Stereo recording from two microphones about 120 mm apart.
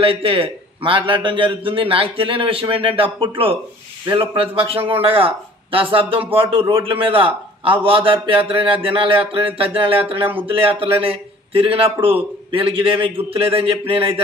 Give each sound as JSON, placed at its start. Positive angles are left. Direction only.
{"t": 0.0, "sound": "a man's voice", "side_deg": -50}